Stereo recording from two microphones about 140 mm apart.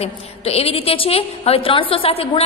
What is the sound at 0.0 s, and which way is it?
A woman's voice, 45° left (ahead or behind).